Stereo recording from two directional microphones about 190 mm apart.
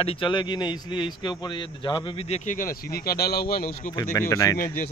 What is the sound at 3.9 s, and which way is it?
Speech, 15° left (ahead or behind).